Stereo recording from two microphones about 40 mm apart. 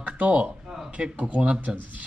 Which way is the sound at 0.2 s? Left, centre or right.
Right.